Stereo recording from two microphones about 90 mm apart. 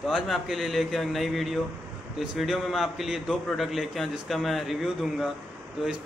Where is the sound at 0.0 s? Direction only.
Centre (ahead or behind).